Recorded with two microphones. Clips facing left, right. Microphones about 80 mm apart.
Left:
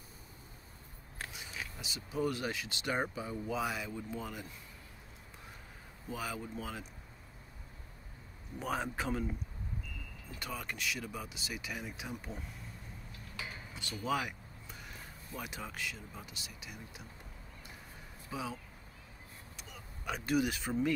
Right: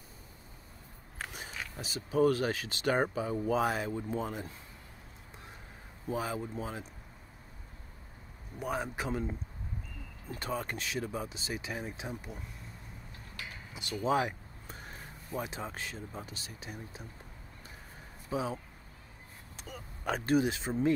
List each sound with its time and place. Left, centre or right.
1.3 s speech: right
6.0 s speech: right
8.5 s a man's voice: centre
10.3 s speech: right
13.7 s speech: right
18.3 s speech: right
19.5 s a sound: right